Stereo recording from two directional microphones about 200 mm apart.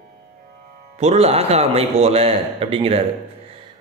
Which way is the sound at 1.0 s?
30° right (ahead or behind).